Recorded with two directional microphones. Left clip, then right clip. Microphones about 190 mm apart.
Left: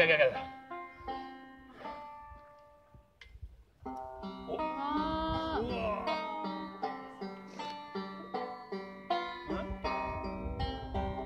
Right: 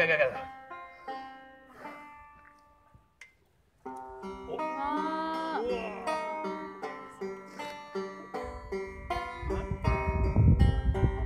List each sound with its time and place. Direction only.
0.0 s speech: 5° right (ahead or behind)
0.5 s music: 30° right (ahead or behind)
3.8 s music: 35° right (ahead or behind)